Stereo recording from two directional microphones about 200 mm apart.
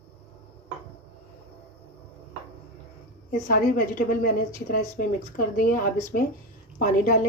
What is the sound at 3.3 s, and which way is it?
A woman's voice, 45° left (ahead or behind).